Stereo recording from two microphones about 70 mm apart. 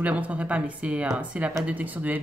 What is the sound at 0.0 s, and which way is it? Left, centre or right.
A woman's voice, right.